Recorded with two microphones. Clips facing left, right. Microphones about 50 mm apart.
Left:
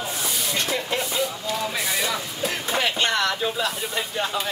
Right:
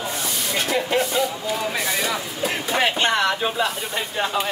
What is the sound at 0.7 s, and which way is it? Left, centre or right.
Speech, centre.